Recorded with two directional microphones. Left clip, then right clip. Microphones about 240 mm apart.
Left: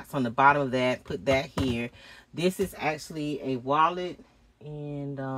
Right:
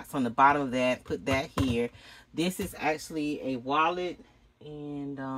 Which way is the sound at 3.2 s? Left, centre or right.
Centre.